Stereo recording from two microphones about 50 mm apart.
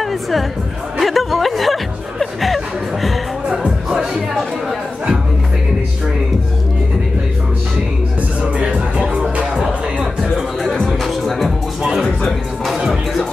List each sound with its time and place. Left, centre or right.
0.0 s music: centre
8.4 s music: right
10.3 s music: centre
12.6 s music: centre